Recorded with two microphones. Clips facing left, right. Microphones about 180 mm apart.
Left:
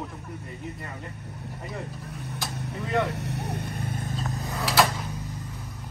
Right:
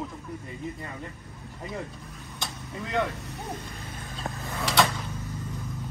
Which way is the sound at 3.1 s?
65° left (ahead or behind).